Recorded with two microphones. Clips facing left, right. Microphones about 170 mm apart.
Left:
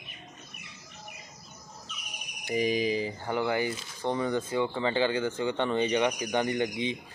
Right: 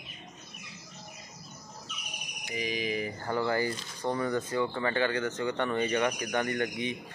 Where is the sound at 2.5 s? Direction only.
40° left (ahead or behind).